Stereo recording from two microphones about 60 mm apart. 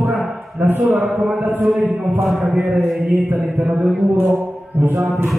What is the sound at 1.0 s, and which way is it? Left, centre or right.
Speech, centre.